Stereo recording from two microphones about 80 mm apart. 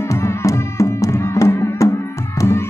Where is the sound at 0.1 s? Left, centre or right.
Left.